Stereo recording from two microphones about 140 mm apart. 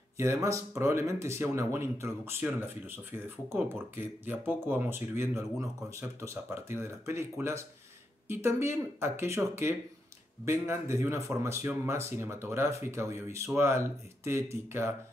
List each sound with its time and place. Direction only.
0.2 s speech: 20° right (ahead or behind)